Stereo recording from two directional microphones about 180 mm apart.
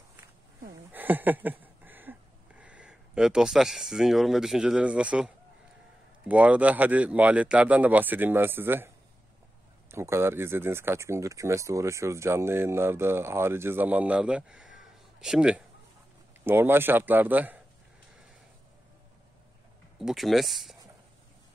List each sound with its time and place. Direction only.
0.9 s a sound: 10° right (ahead or behind)
6.2 s speech: 10° right (ahead or behind)
20.0 s speech: centre (ahead or behind)